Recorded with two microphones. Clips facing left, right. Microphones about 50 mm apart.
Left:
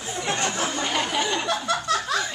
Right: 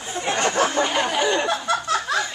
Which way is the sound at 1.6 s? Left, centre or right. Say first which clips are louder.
Right 2 dB; centre.